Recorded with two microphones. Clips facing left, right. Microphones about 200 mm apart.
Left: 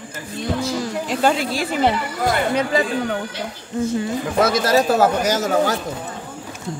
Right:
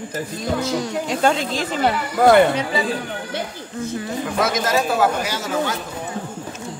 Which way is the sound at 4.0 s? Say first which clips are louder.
Left 1 dB; 30° left (ahead or behind).